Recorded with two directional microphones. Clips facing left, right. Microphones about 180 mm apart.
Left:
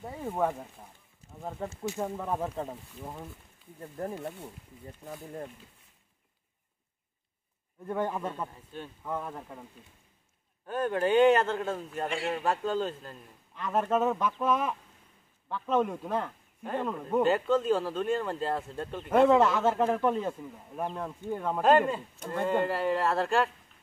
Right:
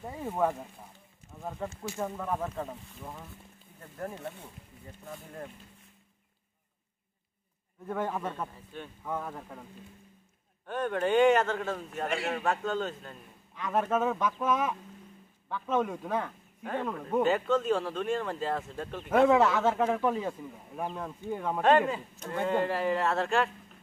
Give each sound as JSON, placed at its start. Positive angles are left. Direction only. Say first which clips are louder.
{"t": 0.0, "sound": "a man's voice", "louder": "even", "side_deg": 0}
{"t": 1.8, "sound": "speech", "louder": "left 2 dB", "side_deg": 20}
{"t": 8.1, "sound": "a man's voice", "louder": "even", "side_deg": 10}
{"t": 10.7, "sound": "a man's voice", "louder": "left 1 dB", "side_deg": 5}